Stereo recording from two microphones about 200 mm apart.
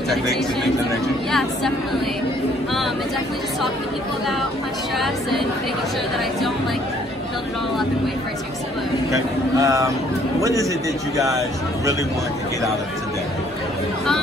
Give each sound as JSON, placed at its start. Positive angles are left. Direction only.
{"t": 4.9, "sound": "a woman's voice", "side_deg": 0}
{"t": 9.1, "sound": "speech", "side_deg": -15}